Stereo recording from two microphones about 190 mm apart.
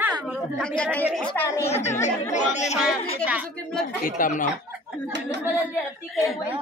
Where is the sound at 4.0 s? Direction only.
45° left (ahead or behind).